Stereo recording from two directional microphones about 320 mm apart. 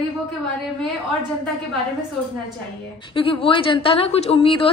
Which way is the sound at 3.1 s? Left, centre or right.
Centre.